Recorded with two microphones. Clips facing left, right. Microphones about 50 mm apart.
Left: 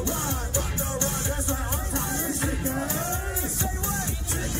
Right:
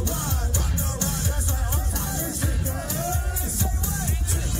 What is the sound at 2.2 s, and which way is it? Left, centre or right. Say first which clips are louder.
Music: left 2 dB; left.